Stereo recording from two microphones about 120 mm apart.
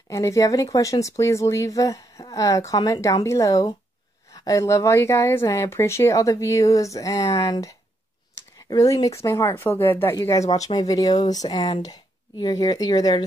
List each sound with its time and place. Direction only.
0.1 s speech: 25° left (ahead or behind)
8.4 s a sound: 30° left (ahead or behind)
9.2 s speech: 20° left (ahead or behind)
10.5 s speech: 35° left (ahead or behind)